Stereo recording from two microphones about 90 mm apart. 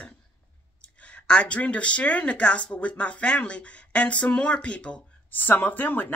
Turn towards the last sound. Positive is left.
turn(degrees=20)  # may be behind; listen again after turning